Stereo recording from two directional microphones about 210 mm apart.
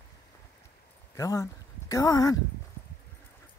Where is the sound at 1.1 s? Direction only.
15° left (ahead or behind).